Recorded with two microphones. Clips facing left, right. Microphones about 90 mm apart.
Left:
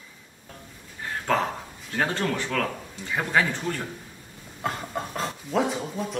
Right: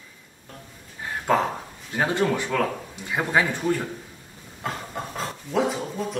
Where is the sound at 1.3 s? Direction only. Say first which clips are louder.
Right 3 dB; 15° right (ahead or behind).